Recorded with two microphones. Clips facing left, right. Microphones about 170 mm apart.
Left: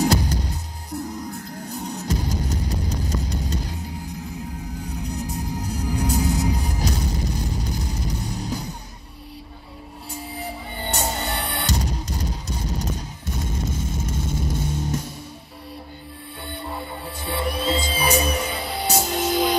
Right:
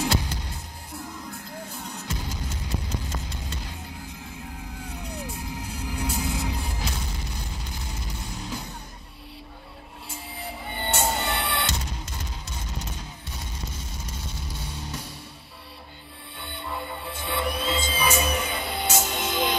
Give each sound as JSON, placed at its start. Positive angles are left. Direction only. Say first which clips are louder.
{"t": 0.0, "sound": "music", "louder": "left 6 dB", "side_deg": 40}
{"t": 10.9, "sound": "music", "louder": "even", "side_deg": 40}
{"t": 16.3, "sound": "music", "louder": "left 2 dB", "side_deg": 40}